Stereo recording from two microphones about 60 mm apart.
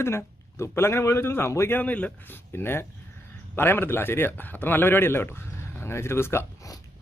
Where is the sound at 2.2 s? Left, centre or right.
Left.